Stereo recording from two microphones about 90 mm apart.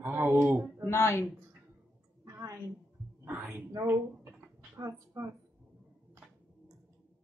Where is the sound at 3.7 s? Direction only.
35° right (ahead or behind).